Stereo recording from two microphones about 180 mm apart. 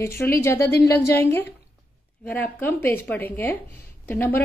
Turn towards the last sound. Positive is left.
turn(degrees=10)  # may be behind; listen again after turning